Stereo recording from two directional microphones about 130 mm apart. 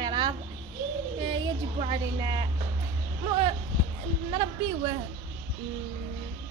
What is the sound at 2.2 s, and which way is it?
Speech, 30° right (ahead or behind).